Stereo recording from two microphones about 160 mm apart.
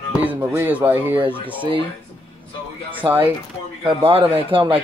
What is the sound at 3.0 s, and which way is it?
Speech, 10° right (ahead or behind).